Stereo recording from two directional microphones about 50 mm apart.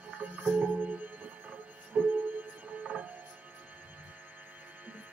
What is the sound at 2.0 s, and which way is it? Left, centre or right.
Music, right.